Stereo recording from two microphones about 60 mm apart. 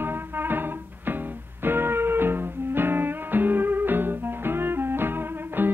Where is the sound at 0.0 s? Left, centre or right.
Right.